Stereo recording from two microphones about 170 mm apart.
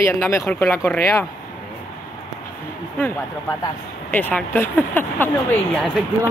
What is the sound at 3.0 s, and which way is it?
Speech, 15° left (ahead or behind).